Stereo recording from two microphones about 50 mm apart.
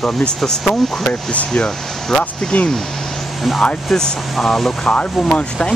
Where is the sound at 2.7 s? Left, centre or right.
Centre.